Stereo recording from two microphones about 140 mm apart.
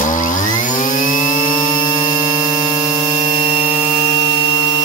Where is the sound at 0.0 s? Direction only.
70° left (ahead or behind).